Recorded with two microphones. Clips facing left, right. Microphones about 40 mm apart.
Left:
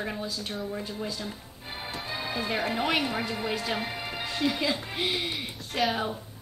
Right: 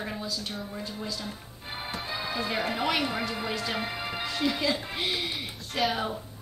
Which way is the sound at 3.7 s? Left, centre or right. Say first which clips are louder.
Right 1 dB; centre.